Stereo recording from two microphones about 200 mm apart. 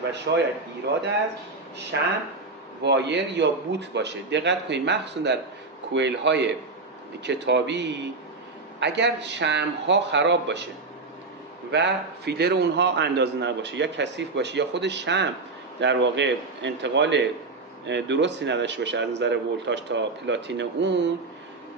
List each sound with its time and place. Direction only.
0.3 s a man's voice: 55° right (ahead or behind)
1.9 s a man's voice: 65° right (ahead or behind)
11.7 s a man's voice: 55° right (ahead or behind)